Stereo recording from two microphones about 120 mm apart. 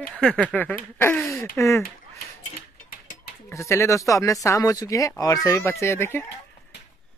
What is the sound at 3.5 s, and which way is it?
Speech, 25° left (ahead or behind).